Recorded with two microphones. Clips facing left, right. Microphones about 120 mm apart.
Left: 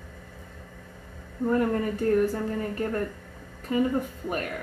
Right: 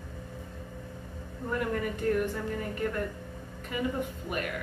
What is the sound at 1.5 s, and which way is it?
A woman's voice, 35° left (ahead or behind).